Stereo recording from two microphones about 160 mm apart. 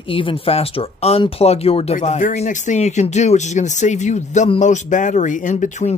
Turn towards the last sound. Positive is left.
turn(degrees=45)  # may be behind; listen again after turning